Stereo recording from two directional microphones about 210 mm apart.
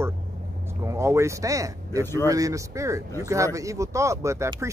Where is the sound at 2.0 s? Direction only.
10° left (ahead or behind).